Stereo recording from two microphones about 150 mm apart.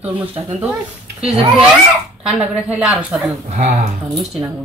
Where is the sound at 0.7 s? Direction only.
5° right (ahead or behind).